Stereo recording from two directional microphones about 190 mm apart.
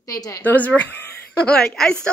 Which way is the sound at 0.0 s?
20° left (ahead or behind).